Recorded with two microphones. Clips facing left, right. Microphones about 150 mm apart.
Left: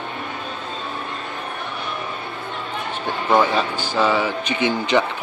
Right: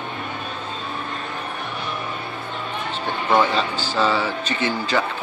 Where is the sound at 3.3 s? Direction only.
15° left (ahead or behind).